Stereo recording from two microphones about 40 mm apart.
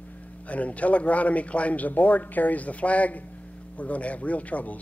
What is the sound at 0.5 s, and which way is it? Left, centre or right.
Speech, left.